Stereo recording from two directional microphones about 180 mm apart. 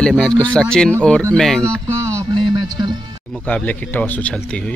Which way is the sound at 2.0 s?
15° right (ahead or behind).